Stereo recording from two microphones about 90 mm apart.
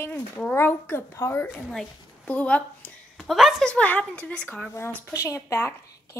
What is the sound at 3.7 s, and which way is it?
Speech, 15° left (ahead or behind).